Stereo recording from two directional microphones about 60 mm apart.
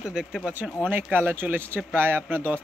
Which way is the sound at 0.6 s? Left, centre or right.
Right.